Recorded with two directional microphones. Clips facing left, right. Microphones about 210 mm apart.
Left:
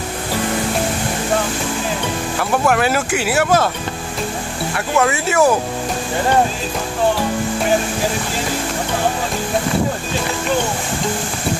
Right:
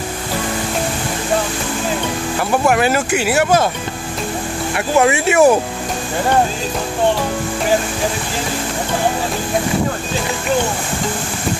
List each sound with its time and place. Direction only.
2.6 s speech: 5° right (ahead or behind)
4.7 s speech: 15° right (ahead or behind)